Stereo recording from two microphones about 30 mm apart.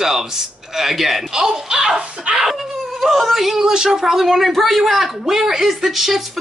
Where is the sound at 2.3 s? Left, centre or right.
Right.